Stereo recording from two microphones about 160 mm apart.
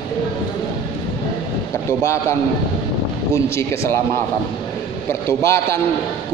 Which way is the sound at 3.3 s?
15° left (ahead or behind).